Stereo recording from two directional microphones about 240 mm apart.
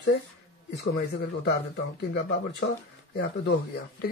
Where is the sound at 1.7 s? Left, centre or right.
Left.